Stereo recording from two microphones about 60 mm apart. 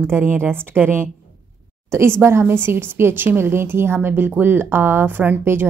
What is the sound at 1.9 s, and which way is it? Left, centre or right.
Speech, right.